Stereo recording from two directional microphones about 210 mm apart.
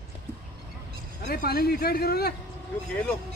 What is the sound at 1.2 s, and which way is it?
A man's voice, 45° left (ahead or behind).